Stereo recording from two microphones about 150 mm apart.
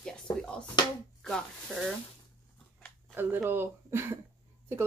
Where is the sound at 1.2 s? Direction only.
5° left (ahead or behind).